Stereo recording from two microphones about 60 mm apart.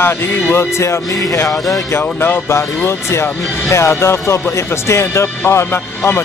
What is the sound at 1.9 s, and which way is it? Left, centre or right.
Speech, left.